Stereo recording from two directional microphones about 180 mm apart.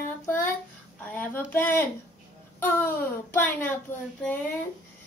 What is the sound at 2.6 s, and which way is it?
A child's voice, 10° left (ahead or behind).